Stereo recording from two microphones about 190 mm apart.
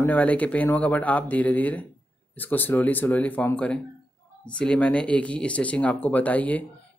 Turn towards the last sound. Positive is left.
turn(degrees=10)  # may be behind; listen again after turning